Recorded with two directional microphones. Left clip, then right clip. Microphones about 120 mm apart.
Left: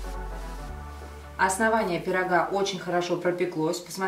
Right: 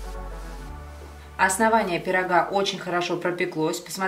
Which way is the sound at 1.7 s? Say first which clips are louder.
Right 3 dB; 25° right (ahead or behind).